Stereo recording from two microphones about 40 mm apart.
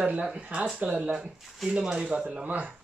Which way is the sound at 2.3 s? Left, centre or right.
Right.